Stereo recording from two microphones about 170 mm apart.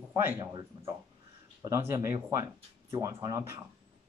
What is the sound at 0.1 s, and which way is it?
Speech, 15° right (ahead or behind).